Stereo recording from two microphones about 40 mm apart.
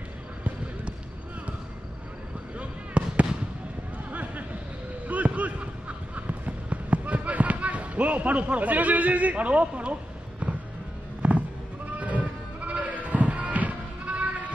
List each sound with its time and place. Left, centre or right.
2.5 s fireworks: right
4.1 s a sound: right
10.4 s music: right
11.2 s sheep: right
12.0 s music: right